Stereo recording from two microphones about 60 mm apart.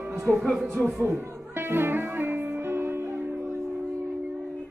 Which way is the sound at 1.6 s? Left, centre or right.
Right.